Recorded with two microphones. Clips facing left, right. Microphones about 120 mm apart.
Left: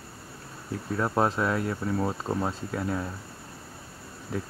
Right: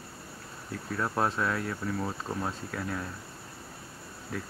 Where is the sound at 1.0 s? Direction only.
20° left (ahead or behind).